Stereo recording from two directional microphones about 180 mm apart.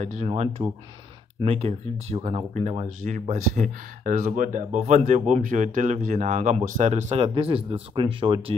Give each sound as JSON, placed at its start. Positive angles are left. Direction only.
{"t": 0.0, "sound": "speech", "side_deg": -40}